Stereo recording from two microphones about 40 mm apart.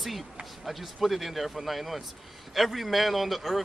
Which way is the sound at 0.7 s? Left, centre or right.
Centre.